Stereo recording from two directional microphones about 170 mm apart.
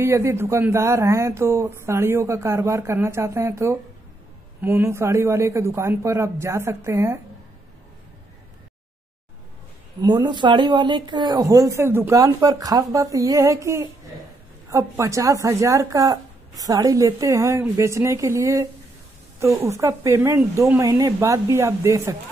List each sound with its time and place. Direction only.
0.0 s speech: 15° right (ahead or behind)
10.0 s speech: 25° right (ahead or behind)